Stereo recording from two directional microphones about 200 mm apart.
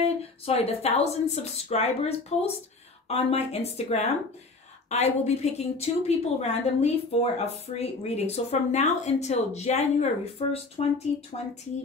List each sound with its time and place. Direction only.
0.0 s a woman's voice: 30° left (ahead or behind)